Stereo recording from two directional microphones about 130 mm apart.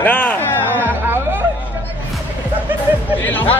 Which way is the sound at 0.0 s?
10° left (ahead or behind).